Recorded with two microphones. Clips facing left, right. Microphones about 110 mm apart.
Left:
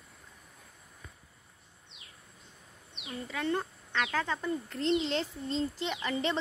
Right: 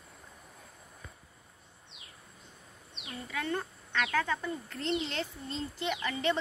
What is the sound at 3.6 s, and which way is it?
A woman's voice, 15° left (ahead or behind).